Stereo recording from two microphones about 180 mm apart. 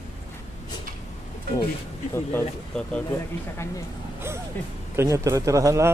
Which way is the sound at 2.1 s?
10° left (ahead or behind).